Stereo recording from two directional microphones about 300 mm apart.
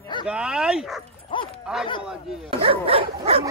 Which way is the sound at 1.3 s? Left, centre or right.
Centre.